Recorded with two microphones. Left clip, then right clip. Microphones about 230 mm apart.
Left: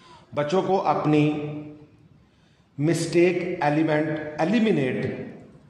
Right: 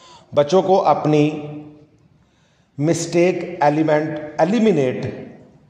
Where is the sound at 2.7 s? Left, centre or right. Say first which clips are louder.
Right 4 dB; right.